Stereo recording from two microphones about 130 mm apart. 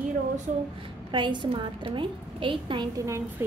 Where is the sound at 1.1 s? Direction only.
35° right (ahead or behind).